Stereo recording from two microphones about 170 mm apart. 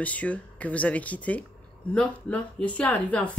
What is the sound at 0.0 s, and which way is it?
Speech, 10° left (ahead or behind).